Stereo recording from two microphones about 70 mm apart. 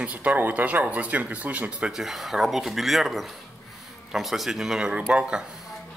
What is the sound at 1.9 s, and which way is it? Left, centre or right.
Speech, centre.